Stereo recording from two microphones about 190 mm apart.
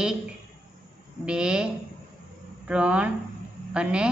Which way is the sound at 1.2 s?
5° right (ahead or behind).